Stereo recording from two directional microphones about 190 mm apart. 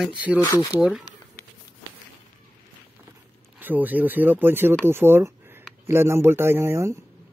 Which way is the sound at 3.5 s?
10° right (ahead or behind).